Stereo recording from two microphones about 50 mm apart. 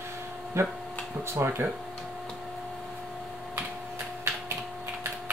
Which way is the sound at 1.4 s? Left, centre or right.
Right.